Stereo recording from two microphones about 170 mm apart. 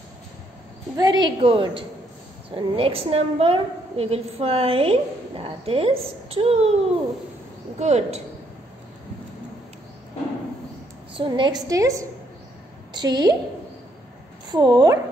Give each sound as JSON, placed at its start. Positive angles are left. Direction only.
{"t": 0.9, "sound": "a woman's voice", "side_deg": -25}
{"t": 7.8, "sound": "a woman's voice", "side_deg": -40}
{"t": 11.1, "sound": "a woman's voice", "side_deg": -25}
{"t": 14.5, "sound": "a woman's voice", "side_deg": -25}